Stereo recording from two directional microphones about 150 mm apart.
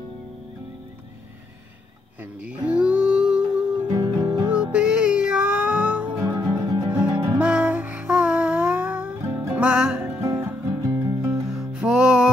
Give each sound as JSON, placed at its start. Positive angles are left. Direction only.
{"t": 2.4, "sound": "music", "side_deg": -10}
{"t": 3.8, "sound": "music", "side_deg": -25}
{"t": 4.7, "sound": "music", "side_deg": -5}
{"t": 7.3, "sound": "music", "side_deg": -10}
{"t": 10.2, "sound": "music", "side_deg": -15}
{"t": 11.4, "sound": "music", "side_deg": -5}